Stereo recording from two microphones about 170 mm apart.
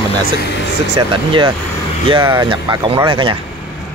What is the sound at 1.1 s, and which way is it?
Speech, 30° right (ahead or behind).